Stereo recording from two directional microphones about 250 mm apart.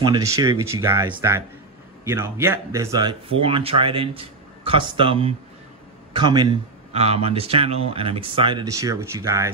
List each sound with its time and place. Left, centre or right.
0.0 s speech: centre